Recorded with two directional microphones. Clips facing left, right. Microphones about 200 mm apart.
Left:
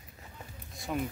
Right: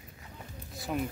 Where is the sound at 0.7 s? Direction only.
Centre (ahead or behind).